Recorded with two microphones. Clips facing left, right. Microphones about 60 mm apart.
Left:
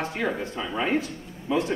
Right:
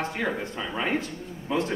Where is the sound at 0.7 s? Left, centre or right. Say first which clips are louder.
Left 2 dB; centre.